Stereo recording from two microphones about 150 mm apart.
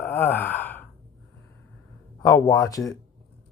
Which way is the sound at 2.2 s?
25° left (ahead or behind).